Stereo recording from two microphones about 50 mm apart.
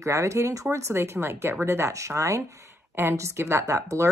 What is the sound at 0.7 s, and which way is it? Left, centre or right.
Speech, right.